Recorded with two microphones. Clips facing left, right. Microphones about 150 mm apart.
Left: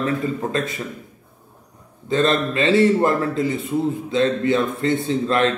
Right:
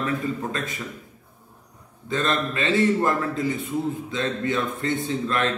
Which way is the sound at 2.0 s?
30° left (ahead or behind).